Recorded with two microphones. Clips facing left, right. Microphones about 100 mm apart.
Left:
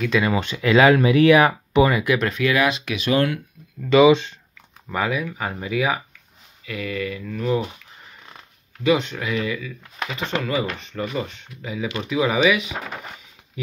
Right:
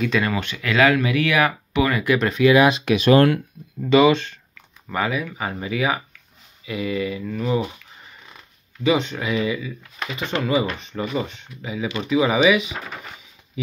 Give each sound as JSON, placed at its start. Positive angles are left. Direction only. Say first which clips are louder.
{"t": 0.0, "sound": "speech", "louder": "left 1 dB", "side_deg": 5}
{"t": 0.4, "sound": "speech", "louder": "left 5 dB", "side_deg": 25}
{"t": 1.9, "sound": "speech", "louder": "even", "side_deg": 10}
{"t": 2.5, "sound": "speech", "louder": "right 5 dB", "side_deg": -25}
{"t": 2.8, "sound": "speech", "louder": "right 8 dB", "side_deg": -40}
{"t": 3.1, "sound": "speech", "louder": "right 5 dB", "side_deg": -55}
{"t": 4.1, "sound": "speech", "louder": "left 4 dB", "side_deg": 15}
{"t": 4.8, "sound": "speech", "louder": "even", "side_deg": 0}
{"t": 6.6, "sound": "speech", "louder": "right 3 dB", "side_deg": -15}
{"t": 8.8, "sound": "speech", "louder": "even", "side_deg": 0}